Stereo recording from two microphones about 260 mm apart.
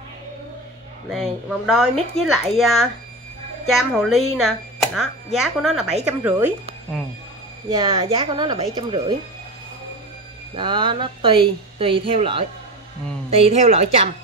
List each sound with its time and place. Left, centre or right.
1.1 s speech: centre
4.1 s speech: centre
7.7 s speech: centre
10.5 s speech: centre